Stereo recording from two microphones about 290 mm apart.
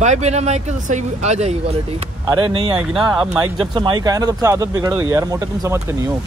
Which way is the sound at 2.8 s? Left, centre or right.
Centre.